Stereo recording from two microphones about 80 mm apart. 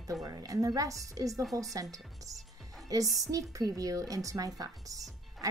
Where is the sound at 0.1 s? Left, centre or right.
Right.